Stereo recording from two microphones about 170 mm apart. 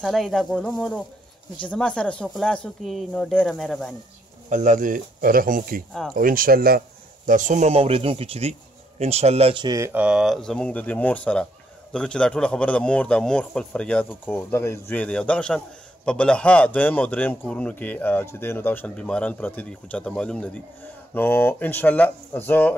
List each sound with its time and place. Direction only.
0.0 s speech: centre (ahead or behind)
4.5 s speech: 45° right (ahead or behind)
7.2 s speech: 50° right (ahead or behind); by 10.0 s 15° right (ahead or behind)
10.0 s speech: 5° right (ahead or behind)